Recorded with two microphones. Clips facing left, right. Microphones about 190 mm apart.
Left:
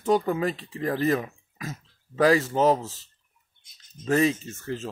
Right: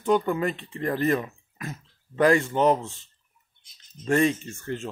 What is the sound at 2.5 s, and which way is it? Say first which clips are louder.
Speech: even; 35° left (ahead or behind).